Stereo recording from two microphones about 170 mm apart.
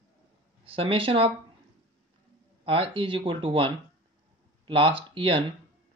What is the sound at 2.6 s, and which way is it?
Speech, 30° right (ahead or behind).